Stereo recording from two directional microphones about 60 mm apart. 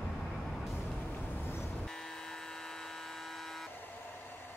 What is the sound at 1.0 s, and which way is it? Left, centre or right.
Vehicle, left.